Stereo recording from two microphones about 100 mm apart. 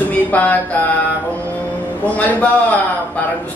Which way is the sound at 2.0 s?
15° left (ahead or behind).